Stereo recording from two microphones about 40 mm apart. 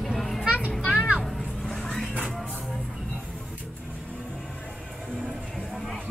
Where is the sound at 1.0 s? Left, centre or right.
Right.